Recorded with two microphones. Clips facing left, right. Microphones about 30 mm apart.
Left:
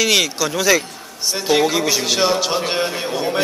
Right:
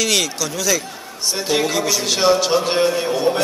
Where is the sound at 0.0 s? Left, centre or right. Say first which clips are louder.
Left 3 dB; centre.